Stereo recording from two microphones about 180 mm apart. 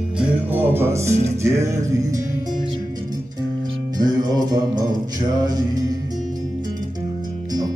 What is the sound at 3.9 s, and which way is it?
Music, 20° right (ahead or behind).